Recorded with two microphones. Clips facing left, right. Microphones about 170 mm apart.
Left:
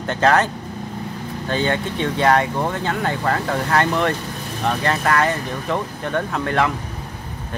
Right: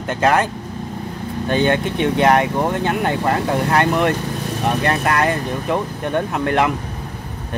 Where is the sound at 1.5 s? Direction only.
15° right (ahead or behind).